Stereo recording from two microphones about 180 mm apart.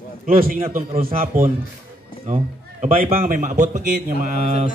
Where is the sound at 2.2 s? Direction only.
35° right (ahead or behind).